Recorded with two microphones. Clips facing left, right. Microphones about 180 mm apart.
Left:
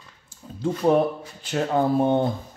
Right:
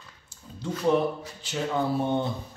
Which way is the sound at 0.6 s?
50° left (ahead or behind).